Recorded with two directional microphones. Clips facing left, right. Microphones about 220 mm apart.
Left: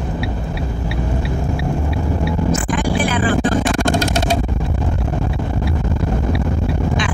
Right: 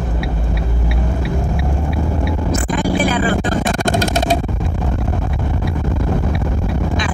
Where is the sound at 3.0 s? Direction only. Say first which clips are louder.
Right 1 dB; 40° right (ahead or behind).